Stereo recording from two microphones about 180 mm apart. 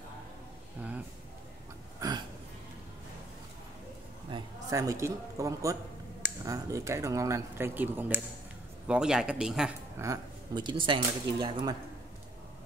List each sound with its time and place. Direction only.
2.0 s a sound: 25° right (ahead or behind)
4.3 s speech: 20° right (ahead or behind)
9.9 s speech: 20° right (ahead or behind)